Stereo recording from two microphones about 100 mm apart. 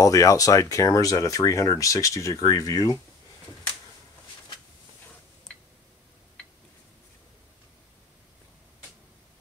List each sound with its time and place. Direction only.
0.0 s speech: 35° left (ahead or behind)